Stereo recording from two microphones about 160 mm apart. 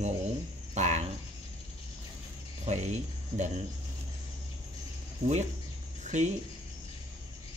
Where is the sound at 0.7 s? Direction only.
45° right (ahead or behind).